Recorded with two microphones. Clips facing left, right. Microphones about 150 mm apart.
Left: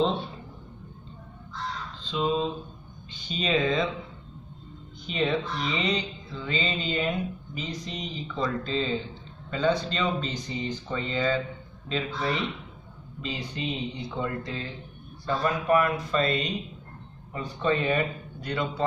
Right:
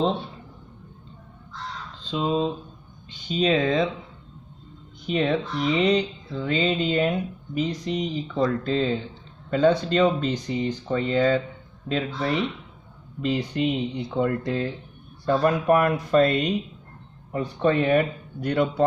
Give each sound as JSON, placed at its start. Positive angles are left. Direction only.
{"t": 3.1, "sound": "speech", "side_deg": -55}
{"t": 5.0, "sound": "speech", "side_deg": -55}